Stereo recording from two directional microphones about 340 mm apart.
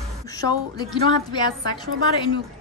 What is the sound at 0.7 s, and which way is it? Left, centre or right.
Speech, centre.